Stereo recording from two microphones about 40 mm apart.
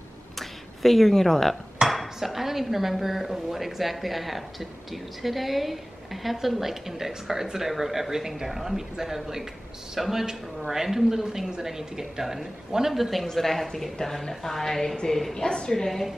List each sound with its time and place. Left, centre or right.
0.4 s speech: centre
1.8 s dishes: centre
2.1 s a woman's voice: centre